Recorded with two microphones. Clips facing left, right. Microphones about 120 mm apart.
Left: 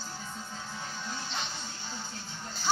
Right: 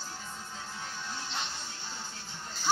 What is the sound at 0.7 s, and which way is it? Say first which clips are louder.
Music: left 1 dB; 5° left (ahead or behind).